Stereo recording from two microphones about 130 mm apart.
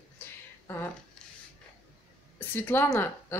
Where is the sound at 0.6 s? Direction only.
20° left (ahead or behind).